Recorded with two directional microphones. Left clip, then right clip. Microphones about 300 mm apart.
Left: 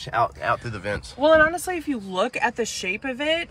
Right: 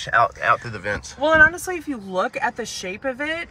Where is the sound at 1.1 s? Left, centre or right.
Left.